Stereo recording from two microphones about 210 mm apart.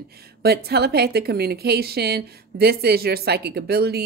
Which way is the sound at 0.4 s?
50° right (ahead or behind).